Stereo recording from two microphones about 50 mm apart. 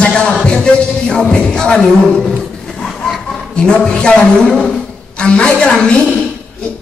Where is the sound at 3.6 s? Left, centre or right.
Centre.